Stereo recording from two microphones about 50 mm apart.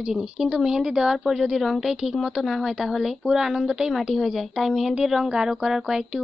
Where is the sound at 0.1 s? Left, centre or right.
Centre.